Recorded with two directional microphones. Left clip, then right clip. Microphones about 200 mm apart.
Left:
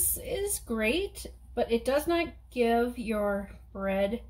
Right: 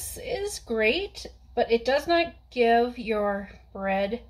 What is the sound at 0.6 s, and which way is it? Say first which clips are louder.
A woman's voice: right 7 dB; centre (ahead or behind).